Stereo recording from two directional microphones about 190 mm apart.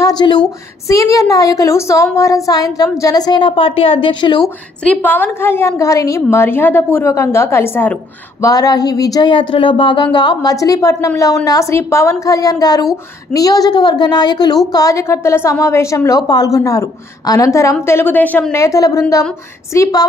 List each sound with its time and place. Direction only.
0.2 s a woman's voice: 25° left (ahead or behind)
4.8 s a woman's voice: 10° left (ahead or behind)